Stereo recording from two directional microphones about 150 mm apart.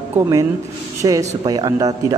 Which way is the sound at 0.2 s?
25° right (ahead or behind).